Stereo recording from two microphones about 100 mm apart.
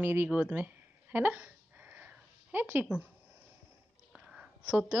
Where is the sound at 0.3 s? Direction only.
15° right (ahead or behind).